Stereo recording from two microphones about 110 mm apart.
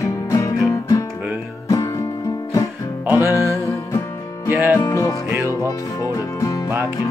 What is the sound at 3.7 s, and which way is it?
Music, 25° left (ahead or behind).